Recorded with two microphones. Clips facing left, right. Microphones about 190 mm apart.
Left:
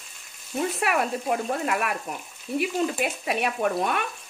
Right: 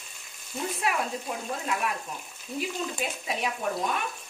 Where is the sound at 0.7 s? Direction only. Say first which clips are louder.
Left 2 dB; 70° left (ahead or behind).